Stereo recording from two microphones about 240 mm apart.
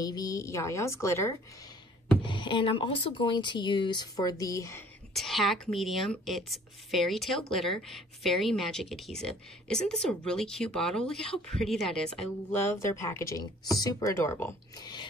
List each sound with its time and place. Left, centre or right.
0.0 s speech: centre
5.1 s a woman's voice: centre